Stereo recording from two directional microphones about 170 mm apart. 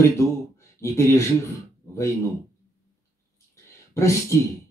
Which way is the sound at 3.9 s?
15° left (ahead or behind).